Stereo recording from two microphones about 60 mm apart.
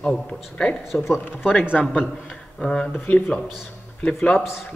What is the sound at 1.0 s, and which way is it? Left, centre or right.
Speech, centre.